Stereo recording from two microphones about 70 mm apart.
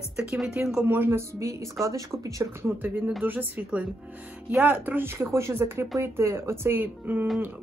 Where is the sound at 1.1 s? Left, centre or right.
Right.